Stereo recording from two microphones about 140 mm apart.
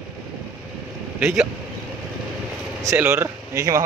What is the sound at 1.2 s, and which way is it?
Speech, 10° right (ahead or behind).